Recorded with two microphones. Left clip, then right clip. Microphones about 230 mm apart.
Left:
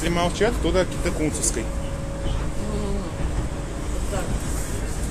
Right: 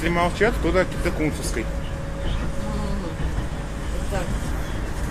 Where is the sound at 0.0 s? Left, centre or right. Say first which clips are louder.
Right 1 dB; centre.